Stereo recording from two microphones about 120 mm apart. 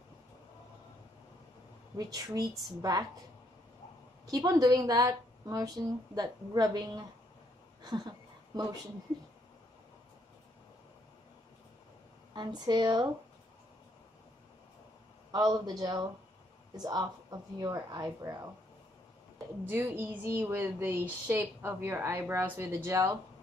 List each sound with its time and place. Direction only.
2.0 s a woman's voice: 35° right (ahead or behind)
4.3 s a woman's voice: 30° right (ahead or behind)
12.4 s a woman's voice: 35° right (ahead or behind)
15.3 s a woman's voice: 30° right (ahead or behind)
19.7 s a woman's voice: 20° right (ahead or behind)